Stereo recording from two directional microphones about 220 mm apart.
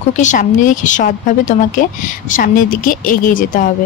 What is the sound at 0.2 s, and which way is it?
Speech, 35° left (ahead or behind).